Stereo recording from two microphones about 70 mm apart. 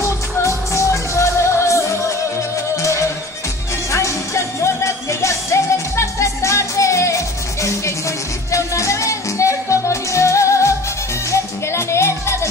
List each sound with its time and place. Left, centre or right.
0.0 s music: left